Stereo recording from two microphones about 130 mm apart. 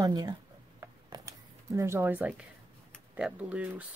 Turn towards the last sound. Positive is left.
turn(degrees=-10)  # may be behind; listen again after turning